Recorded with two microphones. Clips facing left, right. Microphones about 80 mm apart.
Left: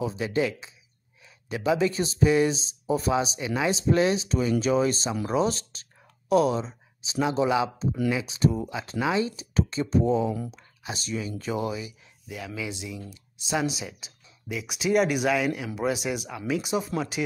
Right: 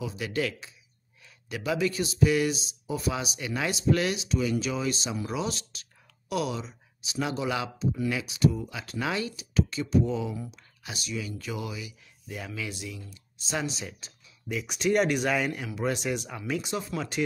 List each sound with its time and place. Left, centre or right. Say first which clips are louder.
0.0 s speech: left 4 dB; left
12.3 s speech: left 1 dB; centre
12.5 s speech: left 3 dB; centre
16.6 s speech: left 4 dB; centre